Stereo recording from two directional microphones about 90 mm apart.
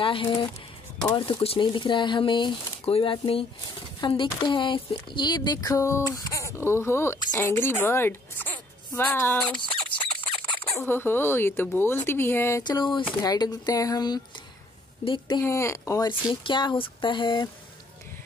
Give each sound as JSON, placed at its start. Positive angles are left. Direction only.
{"t": 0.0, "sound": "speech", "side_deg": 75}
{"t": 1.1, "sound": "speech", "side_deg": 90}
{"t": 4.0, "sound": "speech", "side_deg": 65}
{"t": 5.7, "sound": "a woman's voice", "side_deg": 35}
{"t": 9.4, "sound": "a sound", "side_deg": 10}
{"t": 10.1, "sound": "a sound", "side_deg": 70}
{"t": 10.8, "sound": "speech", "side_deg": 25}
{"t": 12.6, "sound": "speech", "side_deg": 60}
{"t": 13.2, "sound": "a woman's voice", "side_deg": 45}
{"t": 15.0, "sound": "speech", "side_deg": 60}
{"t": 15.4, "sound": "speech", "side_deg": 30}
{"t": 16.4, "sound": "speech", "side_deg": 65}